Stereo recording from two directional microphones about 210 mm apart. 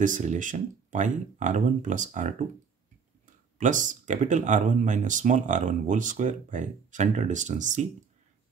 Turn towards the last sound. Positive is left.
turn(degrees=-35)  # may be behind; listen again after turning